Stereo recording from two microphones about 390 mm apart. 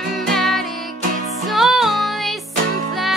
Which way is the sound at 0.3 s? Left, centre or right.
Centre.